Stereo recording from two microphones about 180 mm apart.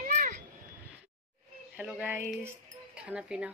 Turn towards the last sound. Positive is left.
turn(degrees=-5)  # may be behind; listen again after turning